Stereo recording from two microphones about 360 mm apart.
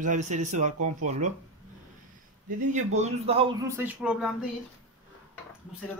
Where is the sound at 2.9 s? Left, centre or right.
Centre.